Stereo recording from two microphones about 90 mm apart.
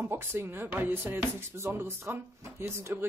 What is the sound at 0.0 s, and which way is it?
Speech, 25° right (ahead or behind).